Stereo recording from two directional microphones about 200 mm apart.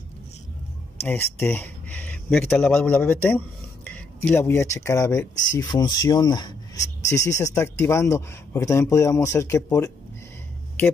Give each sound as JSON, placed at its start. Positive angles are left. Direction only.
{"t": 1.0, "sound": "speech", "side_deg": 10}